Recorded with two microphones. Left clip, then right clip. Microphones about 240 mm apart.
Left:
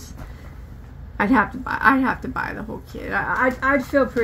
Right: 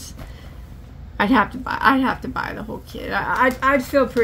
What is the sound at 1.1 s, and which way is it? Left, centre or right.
A woman's voice, centre.